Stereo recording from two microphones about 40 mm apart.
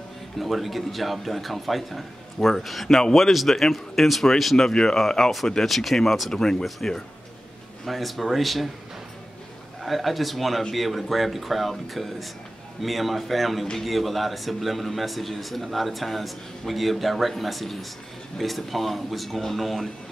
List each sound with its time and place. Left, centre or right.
0.4 s speech: centre
6.3 s speech: centre
7.8 s speech: centre
9.8 s speech: centre